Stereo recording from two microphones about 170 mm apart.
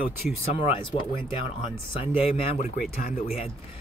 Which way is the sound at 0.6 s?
30° left (ahead or behind).